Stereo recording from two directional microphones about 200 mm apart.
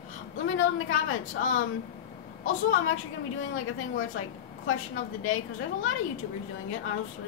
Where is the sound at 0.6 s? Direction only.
90° left.